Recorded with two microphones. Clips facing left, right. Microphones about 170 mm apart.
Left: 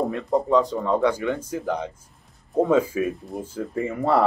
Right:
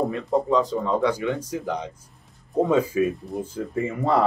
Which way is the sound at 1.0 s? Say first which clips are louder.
Left 1 dB; 10° right (ahead or behind).